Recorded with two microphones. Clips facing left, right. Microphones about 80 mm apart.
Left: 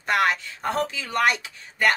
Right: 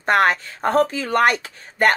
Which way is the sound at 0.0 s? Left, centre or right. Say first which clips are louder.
Right 5 dB; right.